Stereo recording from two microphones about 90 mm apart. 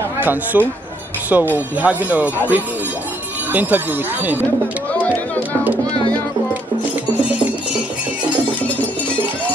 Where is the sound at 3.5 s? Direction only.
20° right (ahead or behind).